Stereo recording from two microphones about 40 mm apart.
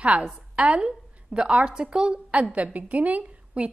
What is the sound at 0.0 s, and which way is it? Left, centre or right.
A woman's voice, right.